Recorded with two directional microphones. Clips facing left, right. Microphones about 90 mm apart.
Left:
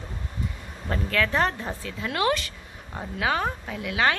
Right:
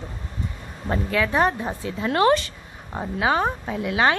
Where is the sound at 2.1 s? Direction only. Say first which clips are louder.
Right 6 dB; 35° right (ahead or behind).